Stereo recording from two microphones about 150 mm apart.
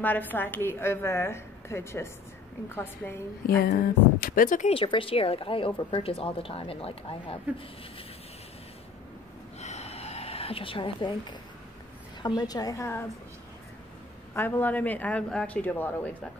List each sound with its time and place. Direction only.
0.0 s a woman's voice: 10° left (ahead or behind)
3.4 s speech: 90° left; by 4.6 s 65° left (ahead or behind)
4.6 s a woman's voice: 35° left (ahead or behind)
9.6 s a sound: 45° left (ahead or behind); by 11.3 s 30° left (ahead or behind)
12.2 s a woman's voice: 30° left (ahead or behind)
14.3 s a woman's voice: 15° left (ahead or behind)